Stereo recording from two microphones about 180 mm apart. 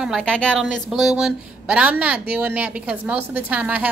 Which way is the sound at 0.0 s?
Centre (ahead or behind).